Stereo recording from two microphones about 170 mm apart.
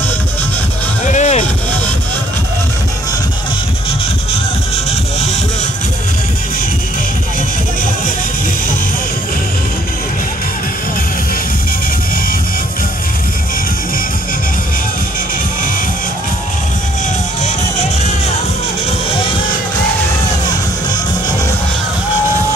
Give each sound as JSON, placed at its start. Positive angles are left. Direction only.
{"t": 1.1, "sound": "music", "side_deg": 40}